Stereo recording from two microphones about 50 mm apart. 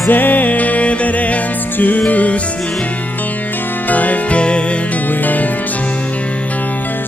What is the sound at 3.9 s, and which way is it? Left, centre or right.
Music, left.